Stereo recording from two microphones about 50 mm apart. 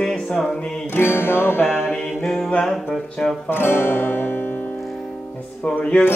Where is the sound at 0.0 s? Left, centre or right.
Centre.